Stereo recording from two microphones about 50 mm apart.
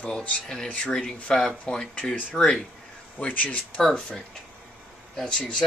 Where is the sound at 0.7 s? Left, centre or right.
Left.